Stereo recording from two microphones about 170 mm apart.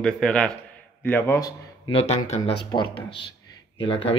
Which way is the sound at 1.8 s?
35° left (ahead or behind).